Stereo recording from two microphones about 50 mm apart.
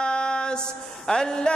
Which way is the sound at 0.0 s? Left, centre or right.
Centre.